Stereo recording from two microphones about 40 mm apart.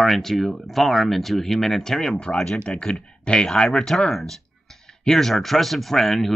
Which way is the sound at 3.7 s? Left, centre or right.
Centre.